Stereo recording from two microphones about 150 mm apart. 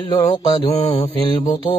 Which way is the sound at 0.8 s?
45° left (ahead or behind).